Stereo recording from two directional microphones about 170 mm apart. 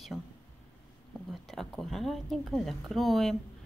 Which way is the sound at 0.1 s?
Centre (ahead or behind).